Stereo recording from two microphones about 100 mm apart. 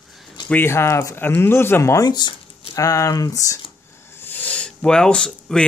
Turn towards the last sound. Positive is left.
turn(degrees=5)  # may be behind; listen again after turning